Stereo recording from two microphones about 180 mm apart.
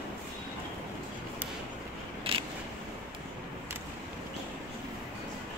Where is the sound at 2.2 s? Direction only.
30° right (ahead or behind).